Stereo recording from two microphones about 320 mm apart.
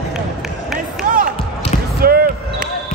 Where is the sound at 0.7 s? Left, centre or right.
Right.